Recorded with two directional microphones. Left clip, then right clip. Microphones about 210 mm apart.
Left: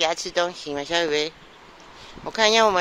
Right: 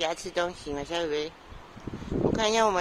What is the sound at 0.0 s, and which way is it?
Speech, 5° left (ahead or behind).